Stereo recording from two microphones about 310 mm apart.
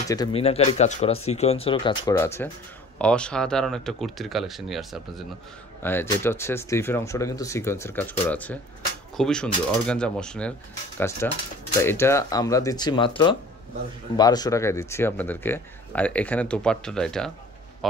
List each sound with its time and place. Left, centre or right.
0.1 s speech: centre